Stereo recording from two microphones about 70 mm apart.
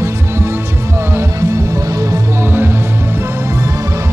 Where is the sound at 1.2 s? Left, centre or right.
Right.